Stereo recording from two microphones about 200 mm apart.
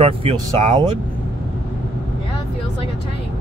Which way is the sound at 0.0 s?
30° right (ahead or behind).